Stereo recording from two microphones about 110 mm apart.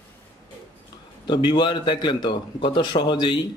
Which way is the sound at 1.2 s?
45° left (ahead or behind).